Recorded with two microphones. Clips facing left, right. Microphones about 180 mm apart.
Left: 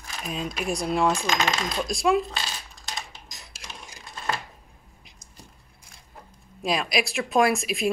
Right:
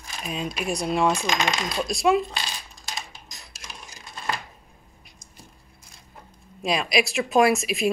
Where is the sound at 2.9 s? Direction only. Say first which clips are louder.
Even; 20° left (ahead or behind).